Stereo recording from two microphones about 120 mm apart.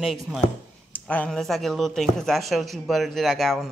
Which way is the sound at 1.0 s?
10° left (ahead or behind).